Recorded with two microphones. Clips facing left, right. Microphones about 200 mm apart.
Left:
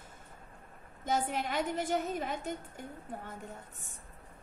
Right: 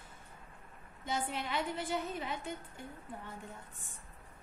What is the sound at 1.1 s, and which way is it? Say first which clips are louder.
A woman's voice: left 4 dB; 45° left (ahead or behind).